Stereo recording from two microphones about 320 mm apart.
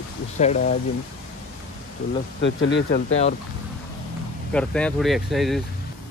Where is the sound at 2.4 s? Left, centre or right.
Left.